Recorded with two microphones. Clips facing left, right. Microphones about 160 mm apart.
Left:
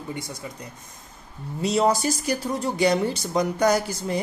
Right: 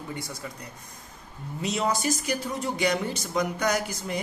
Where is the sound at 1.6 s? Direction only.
35° left (ahead or behind).